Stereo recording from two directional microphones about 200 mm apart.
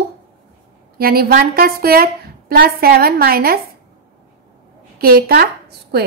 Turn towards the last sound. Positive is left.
turn(degrees=-55)  # may be behind; listen again after turning